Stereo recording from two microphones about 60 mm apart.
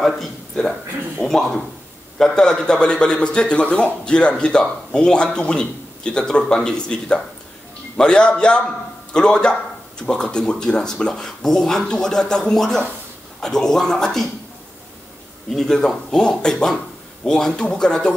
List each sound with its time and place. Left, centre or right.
0.0 s a man's voice: centre
15.5 s a man's voice: centre